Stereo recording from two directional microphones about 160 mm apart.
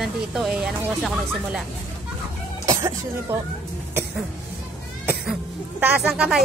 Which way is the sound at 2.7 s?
20° right (ahead or behind).